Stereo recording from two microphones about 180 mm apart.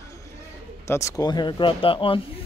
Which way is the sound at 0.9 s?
15° left (ahead or behind).